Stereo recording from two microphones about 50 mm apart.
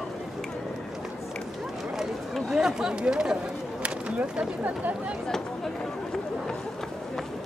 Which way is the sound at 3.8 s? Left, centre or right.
Right.